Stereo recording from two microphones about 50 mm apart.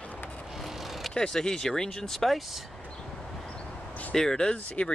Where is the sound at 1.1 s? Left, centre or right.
Centre.